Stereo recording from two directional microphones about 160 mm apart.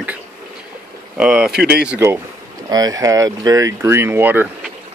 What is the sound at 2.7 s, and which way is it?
Speech, 25° right (ahead or behind).